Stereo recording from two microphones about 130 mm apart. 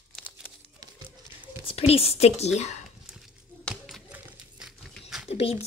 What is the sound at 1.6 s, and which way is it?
Speech, 50° left (ahead or behind).